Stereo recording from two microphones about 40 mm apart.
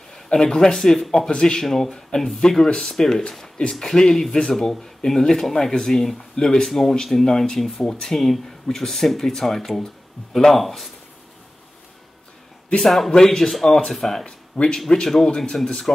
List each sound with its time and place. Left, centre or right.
0.1 s speech: centre
12.8 s speech: centre
13.1 s speech: centre
14.2 s speech: left